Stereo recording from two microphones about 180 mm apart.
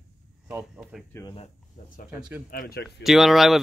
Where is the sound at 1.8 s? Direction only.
55° left (ahead or behind).